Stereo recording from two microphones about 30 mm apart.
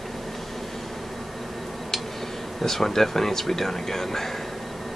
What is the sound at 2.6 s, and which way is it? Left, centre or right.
Speech, centre.